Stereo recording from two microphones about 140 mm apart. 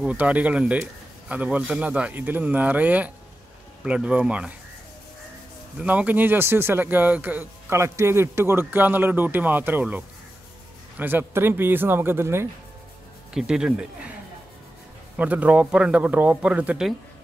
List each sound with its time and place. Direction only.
0.0 s speech: 10° right (ahead or behind)
5.8 s speech: 10° right (ahead or behind)
13.3 s speech: 5° right (ahead or behind)
15.1 s speech: 10° right (ahead or behind)